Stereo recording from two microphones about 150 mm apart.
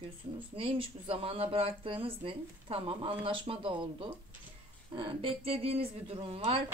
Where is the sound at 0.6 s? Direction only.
35° right (ahead or behind).